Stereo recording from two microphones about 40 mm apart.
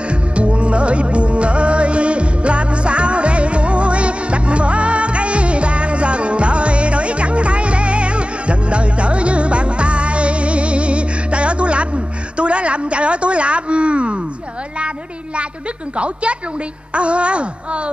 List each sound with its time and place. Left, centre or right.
0.1 s music: right
16.0 s speech: right